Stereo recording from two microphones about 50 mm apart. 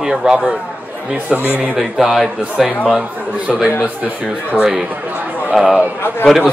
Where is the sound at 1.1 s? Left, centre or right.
Right.